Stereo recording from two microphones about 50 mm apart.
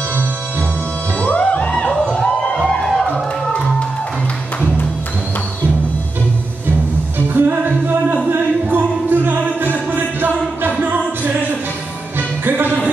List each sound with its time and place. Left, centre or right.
1.2 s music: left
7.3 s music: right
12.2 s music: right